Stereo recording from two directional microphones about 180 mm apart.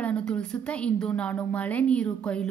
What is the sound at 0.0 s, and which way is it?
A woman's voice, 5° left (ahead or behind).